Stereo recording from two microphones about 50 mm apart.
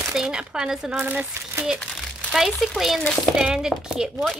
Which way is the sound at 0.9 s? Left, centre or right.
Right.